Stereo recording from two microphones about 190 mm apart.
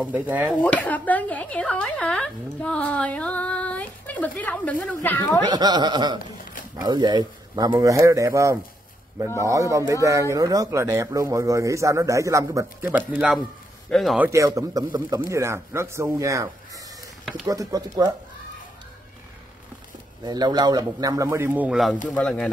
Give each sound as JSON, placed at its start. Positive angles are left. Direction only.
{"t": 0.0, "sound": "a man's voice", "side_deg": -10}
{"t": 0.6, "sound": "speech", "side_deg": 10}
{"t": 5.5, "sound": "a man's voice", "side_deg": -20}
{"t": 17.2, "sound": "a sound", "side_deg": 0}
{"t": 17.5, "sound": "speech", "side_deg": -20}
{"t": 20.2, "sound": "a man's voice", "side_deg": -20}